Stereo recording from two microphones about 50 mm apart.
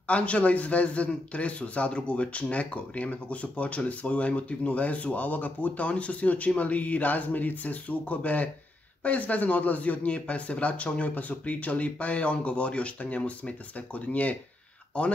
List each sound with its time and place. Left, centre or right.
0.0 s a man's voice: left